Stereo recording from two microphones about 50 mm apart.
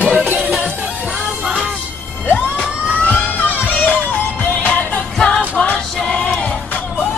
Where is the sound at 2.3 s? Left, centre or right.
Left.